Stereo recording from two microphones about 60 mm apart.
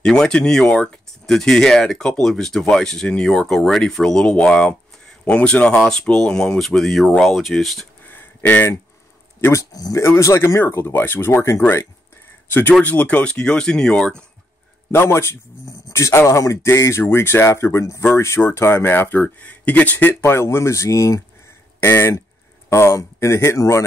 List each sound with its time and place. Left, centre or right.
0.0 s speech: centre
8.0 s a sound: left
9.5 s speech: left
10.0 s speech: left
12.4 s speech: left; by 14.2 s centre
14.9 s speech: left
16.6 s speech: left
19.2 s speech: left
20.2 s speech: left
21.7 s speech: left